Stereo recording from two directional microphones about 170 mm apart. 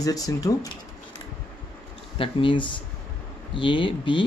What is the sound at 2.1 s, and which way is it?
Speech, 30° left (ahead or behind).